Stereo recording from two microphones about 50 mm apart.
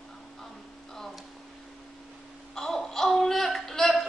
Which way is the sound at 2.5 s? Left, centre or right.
Centre.